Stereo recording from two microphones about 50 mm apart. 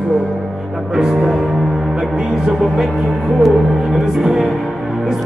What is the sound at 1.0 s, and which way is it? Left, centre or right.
Music, centre.